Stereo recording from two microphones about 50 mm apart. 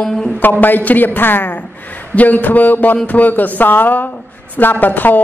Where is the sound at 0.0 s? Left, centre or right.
Centre.